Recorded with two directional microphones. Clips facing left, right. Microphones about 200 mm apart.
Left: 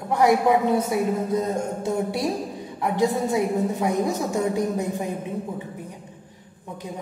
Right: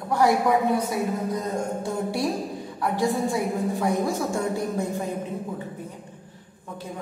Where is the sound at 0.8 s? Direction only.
25° left (ahead or behind).